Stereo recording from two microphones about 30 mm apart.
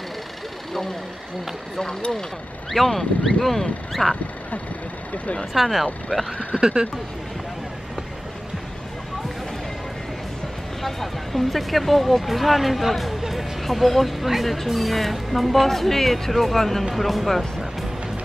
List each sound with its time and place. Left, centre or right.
1.8 s speech: left
2.7 s speech: centre
5.1 s speech: left
5.5 s speech: centre
6.1 s speech: centre
6.5 s speech: right
10.8 s speech: centre